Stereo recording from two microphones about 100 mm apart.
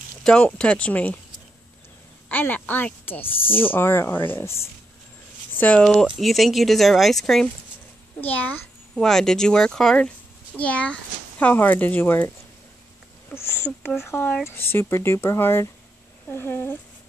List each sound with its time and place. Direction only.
0.2 s speech: 5° left (ahead or behind)
2.2 s speech: 20° left (ahead or behind); by 7.4 s 5° left (ahead or behind)
8.2 s speech: 15° left (ahead or behind)
8.9 s a child's voice: 5° left (ahead or behind)
13.3 s speech: 25° left (ahead or behind)